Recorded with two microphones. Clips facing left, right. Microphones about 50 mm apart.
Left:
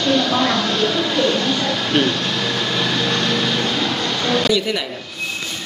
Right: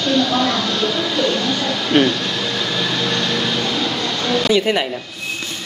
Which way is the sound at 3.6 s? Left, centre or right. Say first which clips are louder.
Even; left.